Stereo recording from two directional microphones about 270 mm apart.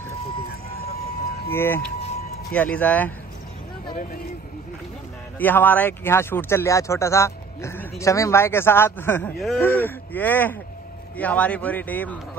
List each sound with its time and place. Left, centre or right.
1.5 s a man's voice: centre
3.9 s speech: left
5.4 s a man's voice: centre